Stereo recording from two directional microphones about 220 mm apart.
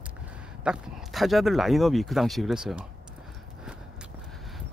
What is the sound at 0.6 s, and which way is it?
Speech, 5° right (ahead or behind).